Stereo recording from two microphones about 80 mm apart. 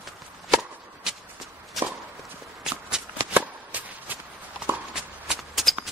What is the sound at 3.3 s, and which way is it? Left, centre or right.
Shuffling cards, right.